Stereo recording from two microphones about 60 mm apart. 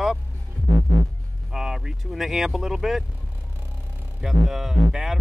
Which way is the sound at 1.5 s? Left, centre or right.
Centre.